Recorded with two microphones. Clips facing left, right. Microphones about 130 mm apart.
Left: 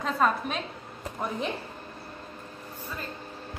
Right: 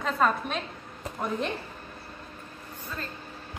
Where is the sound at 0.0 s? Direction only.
Centre (ahead or behind).